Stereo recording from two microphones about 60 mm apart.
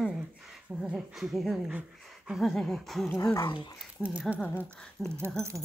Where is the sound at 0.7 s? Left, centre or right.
Centre.